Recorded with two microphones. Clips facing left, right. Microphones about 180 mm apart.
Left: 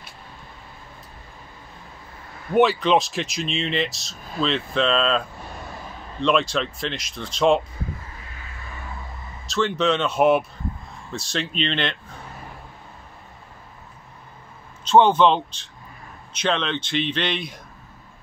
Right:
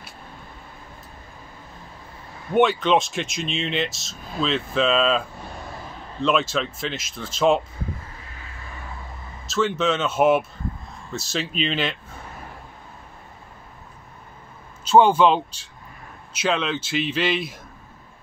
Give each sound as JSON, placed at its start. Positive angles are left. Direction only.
{"t": 2.5, "sound": "speech", "side_deg": 0}
{"t": 6.2, "sound": "speech", "side_deg": 0}
{"t": 9.5, "sound": "speech", "side_deg": 0}
{"t": 14.9, "sound": "speech", "side_deg": -5}